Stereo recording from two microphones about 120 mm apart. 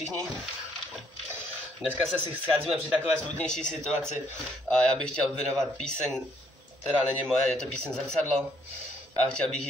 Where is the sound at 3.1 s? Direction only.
5° left (ahead or behind).